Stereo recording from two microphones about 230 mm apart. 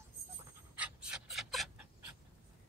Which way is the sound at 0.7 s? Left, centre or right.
Centre.